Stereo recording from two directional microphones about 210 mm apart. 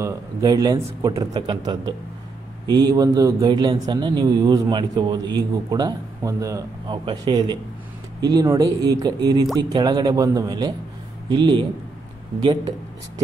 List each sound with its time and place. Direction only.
0.0 s a man's voice: 15° right (ahead or behind)